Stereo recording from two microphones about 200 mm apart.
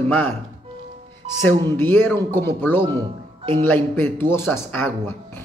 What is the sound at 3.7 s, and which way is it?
A man's voice, 10° left (ahead or behind).